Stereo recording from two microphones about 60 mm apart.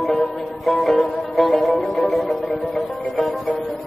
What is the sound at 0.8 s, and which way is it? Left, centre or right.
Music, centre.